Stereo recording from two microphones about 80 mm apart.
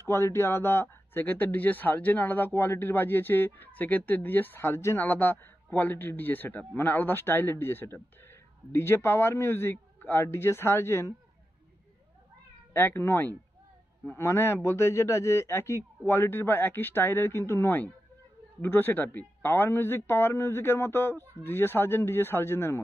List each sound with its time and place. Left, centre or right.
0.1 s speech: left
12.7 s a man's voice: left